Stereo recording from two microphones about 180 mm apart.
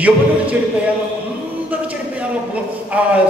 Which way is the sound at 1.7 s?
10° right (ahead or behind).